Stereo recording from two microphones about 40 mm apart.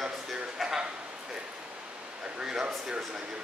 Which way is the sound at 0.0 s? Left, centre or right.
Centre.